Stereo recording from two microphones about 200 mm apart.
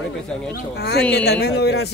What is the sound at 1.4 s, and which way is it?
Speech, 55° left (ahead or behind).